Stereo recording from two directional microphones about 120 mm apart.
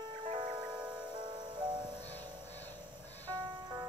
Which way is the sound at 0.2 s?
45° right (ahead or behind).